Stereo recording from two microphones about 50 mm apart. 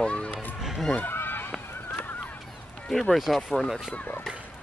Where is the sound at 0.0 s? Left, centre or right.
Left.